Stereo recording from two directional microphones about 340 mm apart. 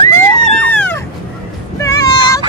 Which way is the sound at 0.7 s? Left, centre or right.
Centre.